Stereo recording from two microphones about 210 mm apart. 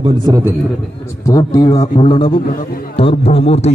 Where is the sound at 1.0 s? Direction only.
15° left (ahead or behind).